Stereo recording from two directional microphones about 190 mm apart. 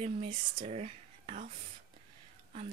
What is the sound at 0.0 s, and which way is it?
Speech, 30° right (ahead or behind).